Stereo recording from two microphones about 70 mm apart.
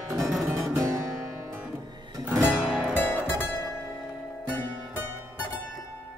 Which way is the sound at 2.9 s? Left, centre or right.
Left.